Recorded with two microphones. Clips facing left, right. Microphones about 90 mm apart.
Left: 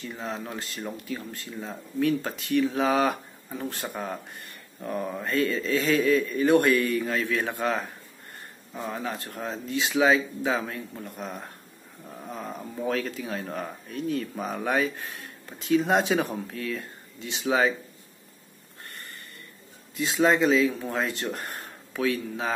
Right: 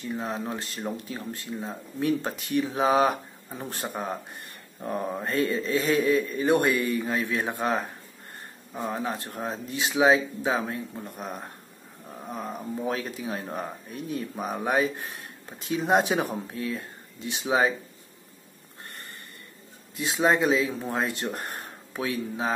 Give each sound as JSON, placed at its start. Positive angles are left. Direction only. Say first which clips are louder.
{"t": 0.1, "sound": "speech", "louder": "right 4 dB", "side_deg": -20}
{"t": 20.0, "sound": "speech", "louder": "left 1 dB", "side_deg": -20}